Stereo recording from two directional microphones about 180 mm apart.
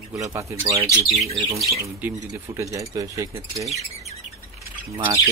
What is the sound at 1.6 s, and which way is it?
Speech, 10° right (ahead or behind).